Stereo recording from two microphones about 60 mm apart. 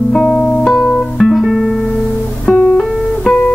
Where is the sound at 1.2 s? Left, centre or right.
Centre.